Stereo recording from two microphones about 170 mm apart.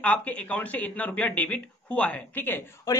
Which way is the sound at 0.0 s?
10° left (ahead or behind).